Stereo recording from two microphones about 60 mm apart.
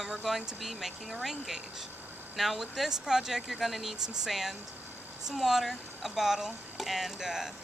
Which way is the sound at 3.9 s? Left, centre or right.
Right.